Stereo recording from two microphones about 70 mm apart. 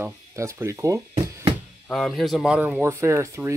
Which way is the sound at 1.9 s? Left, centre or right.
Centre.